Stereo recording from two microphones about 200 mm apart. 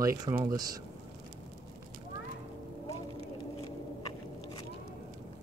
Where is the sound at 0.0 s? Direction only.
15° right (ahead or behind).